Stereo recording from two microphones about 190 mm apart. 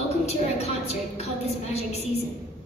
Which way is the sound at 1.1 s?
35° left (ahead or behind).